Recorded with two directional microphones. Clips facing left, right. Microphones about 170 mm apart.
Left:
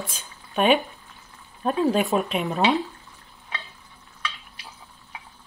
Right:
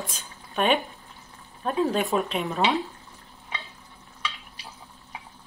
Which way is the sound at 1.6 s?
15° left (ahead or behind).